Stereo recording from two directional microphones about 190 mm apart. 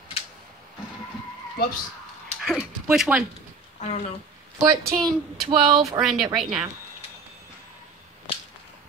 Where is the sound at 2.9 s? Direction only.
Centre (ahead or behind).